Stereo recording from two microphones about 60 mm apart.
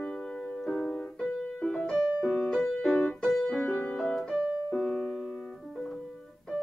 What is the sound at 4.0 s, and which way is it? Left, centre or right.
Music, centre.